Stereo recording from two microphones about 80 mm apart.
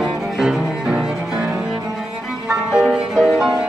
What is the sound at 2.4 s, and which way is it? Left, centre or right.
Music, centre.